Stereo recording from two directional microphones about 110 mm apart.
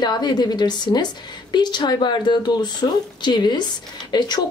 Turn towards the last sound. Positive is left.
turn(degrees=40)  # may be behind; listen again after turning